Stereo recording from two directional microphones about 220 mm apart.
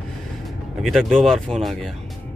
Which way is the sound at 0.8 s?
Centre (ahead or behind).